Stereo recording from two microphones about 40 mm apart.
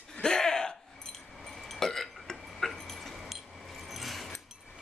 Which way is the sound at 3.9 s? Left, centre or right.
Centre.